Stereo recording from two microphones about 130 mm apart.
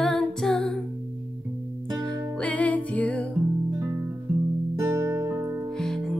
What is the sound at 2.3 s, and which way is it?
Music, 10° left (ahead or behind).